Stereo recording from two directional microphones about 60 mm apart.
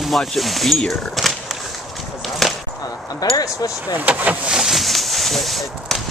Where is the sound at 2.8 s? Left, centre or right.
Left.